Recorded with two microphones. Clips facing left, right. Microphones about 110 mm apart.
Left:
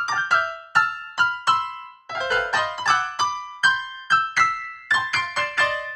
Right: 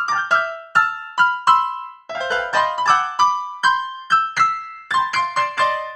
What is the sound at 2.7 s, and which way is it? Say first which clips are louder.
Piano: right 6 dB; 50° right (ahead or behind).